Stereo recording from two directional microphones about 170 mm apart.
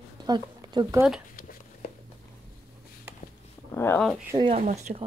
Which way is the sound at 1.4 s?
55° left (ahead or behind).